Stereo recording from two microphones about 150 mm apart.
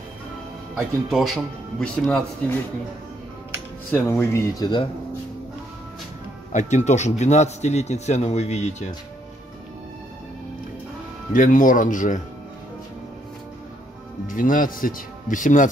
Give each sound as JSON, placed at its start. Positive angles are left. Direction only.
{"t": 1.1, "sound": "speech", "side_deg": 0}
{"t": 3.9, "sound": "speech", "side_deg": 15}
{"t": 6.5, "sound": "speech", "side_deg": 50}
{"t": 11.3, "sound": "a man's voice", "side_deg": 60}
{"t": 14.2, "sound": "a man's voice", "side_deg": 65}